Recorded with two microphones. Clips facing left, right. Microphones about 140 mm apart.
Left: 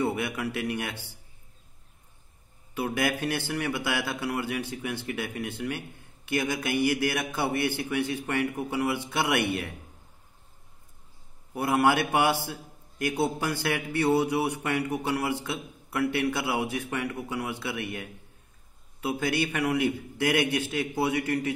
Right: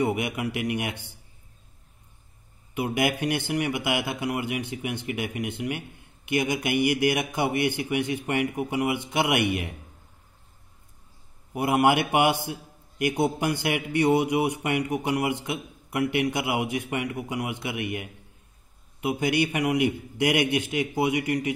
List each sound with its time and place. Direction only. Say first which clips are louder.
0.0 s a man's voice: right 2 dB; 15° right (ahead or behind)
2.7 s a man's voice: right 2 dB; 15° right (ahead or behind)
11.5 s a man's voice: right 2 dB; 15° right (ahead or behind)